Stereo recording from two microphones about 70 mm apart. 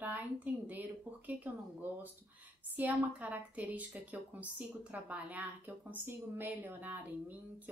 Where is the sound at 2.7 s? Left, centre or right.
Right.